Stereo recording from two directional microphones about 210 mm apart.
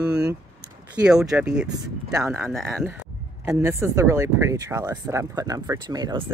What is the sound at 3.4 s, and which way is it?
Speech, 10° right (ahead or behind).